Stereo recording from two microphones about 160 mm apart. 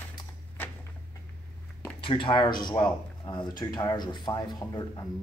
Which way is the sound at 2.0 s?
30° left (ahead or behind).